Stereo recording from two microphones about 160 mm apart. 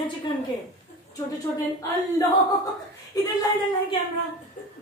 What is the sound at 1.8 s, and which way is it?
Speech, 20° left (ahead or behind).